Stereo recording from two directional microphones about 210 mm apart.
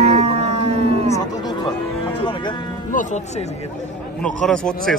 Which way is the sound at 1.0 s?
15° left (ahead or behind).